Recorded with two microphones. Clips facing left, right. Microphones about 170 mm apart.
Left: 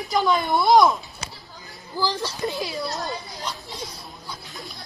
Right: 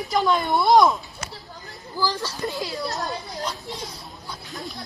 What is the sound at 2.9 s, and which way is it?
Speech, centre (ahead or behind).